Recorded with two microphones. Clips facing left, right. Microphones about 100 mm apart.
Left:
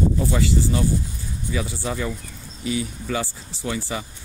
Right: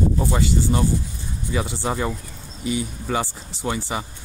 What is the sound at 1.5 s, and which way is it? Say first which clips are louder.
Speech: right 2 dB; 30° right (ahead or behind).